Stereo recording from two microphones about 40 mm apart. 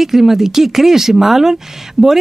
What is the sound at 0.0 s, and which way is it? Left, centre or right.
Speech, centre.